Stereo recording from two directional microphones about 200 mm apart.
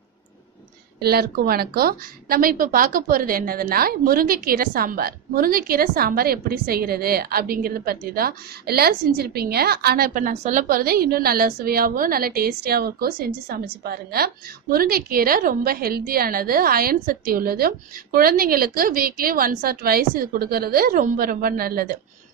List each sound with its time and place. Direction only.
0.9 s a woman's voice: 50° right (ahead or behind)